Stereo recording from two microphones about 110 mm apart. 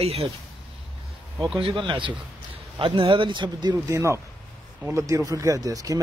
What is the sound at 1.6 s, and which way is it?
Speech, 55° right (ahead or behind).